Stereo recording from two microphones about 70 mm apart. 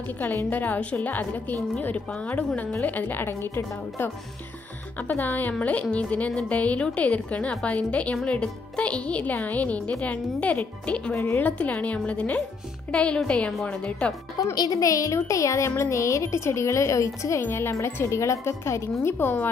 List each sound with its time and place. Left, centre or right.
0.5 s a woman's voice: left
11.1 s a woman's voice: left
14.4 s a woman's voice: left